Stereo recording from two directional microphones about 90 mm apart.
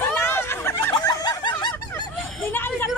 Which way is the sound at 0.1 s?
25° left (ahead or behind).